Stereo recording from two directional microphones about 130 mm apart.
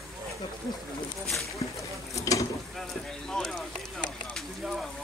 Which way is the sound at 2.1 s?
25° left (ahead or behind).